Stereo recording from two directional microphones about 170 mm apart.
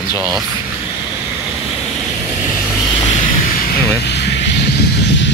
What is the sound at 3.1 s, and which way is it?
Vehicle, 50° left (ahead or behind).